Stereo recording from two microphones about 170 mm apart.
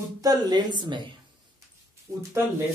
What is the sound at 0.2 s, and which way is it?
Speech, 25° right (ahead or behind).